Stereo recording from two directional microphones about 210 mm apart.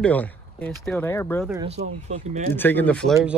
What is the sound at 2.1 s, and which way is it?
Speech, 35° right (ahead or behind).